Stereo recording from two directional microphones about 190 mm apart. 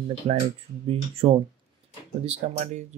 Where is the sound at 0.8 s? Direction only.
30° right (ahead or behind).